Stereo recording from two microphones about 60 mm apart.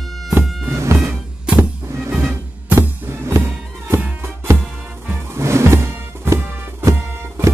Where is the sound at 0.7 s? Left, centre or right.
Right.